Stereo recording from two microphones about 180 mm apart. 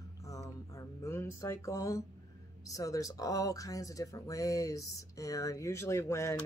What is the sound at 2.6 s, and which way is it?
Speech, 20° left (ahead or behind).